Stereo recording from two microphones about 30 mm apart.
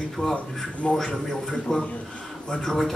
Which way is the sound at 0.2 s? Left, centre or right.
Left.